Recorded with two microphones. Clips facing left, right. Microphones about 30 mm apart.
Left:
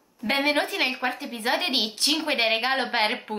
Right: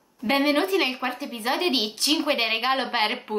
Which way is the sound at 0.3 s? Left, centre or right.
Centre.